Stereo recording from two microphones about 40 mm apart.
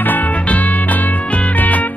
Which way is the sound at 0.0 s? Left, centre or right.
Left.